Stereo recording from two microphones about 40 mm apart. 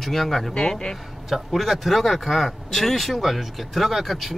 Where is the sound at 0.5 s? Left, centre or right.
Left.